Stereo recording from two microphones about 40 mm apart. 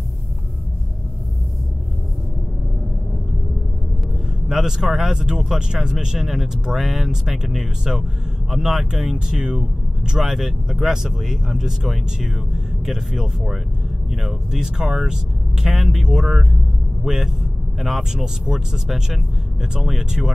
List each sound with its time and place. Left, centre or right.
4.5 s speech: centre
18.1 s speech: centre